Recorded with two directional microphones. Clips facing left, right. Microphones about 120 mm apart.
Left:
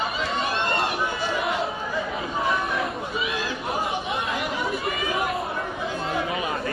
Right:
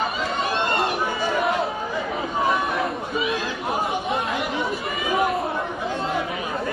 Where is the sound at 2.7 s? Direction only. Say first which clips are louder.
Right 3 dB; centre (ahead or behind).